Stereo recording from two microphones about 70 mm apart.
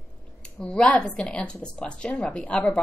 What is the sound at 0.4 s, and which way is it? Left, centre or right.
A woman's voice, centre.